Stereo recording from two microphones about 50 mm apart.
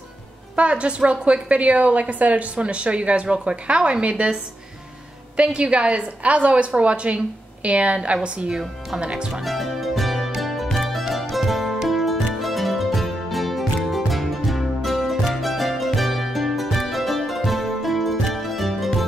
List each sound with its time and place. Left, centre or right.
0.6 s a woman's voice: right
5.4 s a woman's voice: right
9.3 s music: centre